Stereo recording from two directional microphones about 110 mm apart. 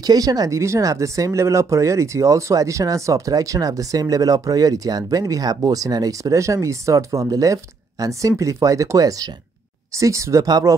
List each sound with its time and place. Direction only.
0.0 s speech: 35° right (ahead or behind)